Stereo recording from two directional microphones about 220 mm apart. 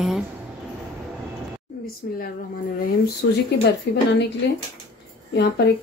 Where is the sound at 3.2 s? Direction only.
60° left (ahead or behind).